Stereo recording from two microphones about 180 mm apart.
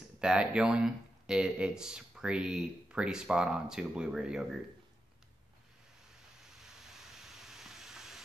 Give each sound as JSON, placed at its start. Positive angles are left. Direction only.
{"t": 0.2, "sound": "speech", "side_deg": -5}
{"t": 6.5, "sound": "vehicle", "side_deg": 0}